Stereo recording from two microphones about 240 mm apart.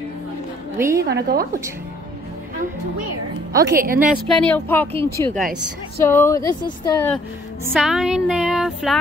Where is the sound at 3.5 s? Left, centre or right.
Right.